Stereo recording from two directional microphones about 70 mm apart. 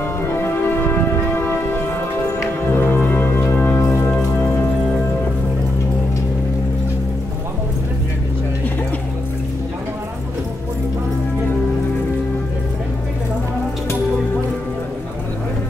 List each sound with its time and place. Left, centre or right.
0.4 s music: left
2.6 s music: left